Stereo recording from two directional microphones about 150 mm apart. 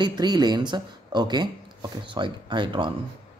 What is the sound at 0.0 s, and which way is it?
Speech, 30° right (ahead or behind).